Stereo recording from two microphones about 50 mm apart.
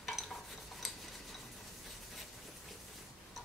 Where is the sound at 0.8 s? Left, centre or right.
Centre.